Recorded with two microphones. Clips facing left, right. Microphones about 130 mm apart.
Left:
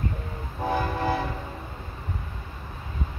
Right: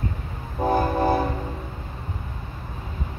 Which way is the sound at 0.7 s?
40° right (ahead or behind).